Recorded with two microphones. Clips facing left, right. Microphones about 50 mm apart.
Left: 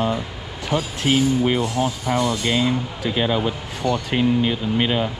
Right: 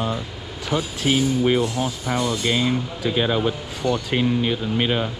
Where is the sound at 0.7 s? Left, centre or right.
Centre.